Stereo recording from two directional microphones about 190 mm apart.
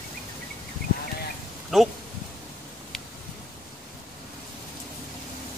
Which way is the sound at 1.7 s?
Centre (ahead or behind).